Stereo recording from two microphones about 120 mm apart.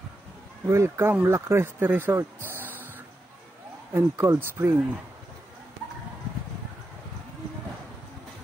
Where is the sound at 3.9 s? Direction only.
25° right (ahead or behind).